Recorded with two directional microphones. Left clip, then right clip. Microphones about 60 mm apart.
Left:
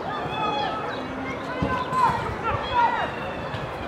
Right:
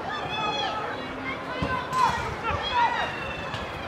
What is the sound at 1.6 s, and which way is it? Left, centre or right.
Run, right.